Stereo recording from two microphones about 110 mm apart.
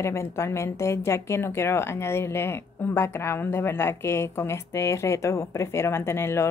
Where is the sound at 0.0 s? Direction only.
25° left (ahead or behind).